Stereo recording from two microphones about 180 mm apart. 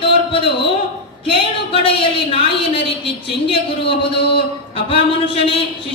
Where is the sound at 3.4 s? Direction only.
30° left (ahead or behind).